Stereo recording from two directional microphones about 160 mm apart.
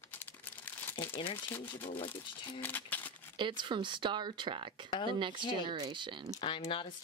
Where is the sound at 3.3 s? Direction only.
30° right (ahead or behind).